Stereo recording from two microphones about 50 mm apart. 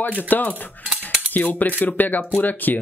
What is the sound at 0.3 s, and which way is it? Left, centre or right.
Speech, left.